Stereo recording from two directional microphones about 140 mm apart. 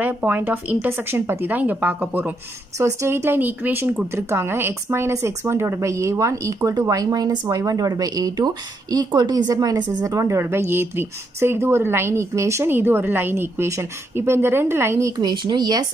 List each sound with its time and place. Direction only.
0.0 s a woman's voice: 10° right (ahead or behind); by 15.8 s 30° right (ahead or behind)